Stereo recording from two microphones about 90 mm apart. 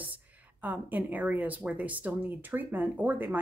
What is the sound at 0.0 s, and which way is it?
Speech, 20° right (ahead or behind).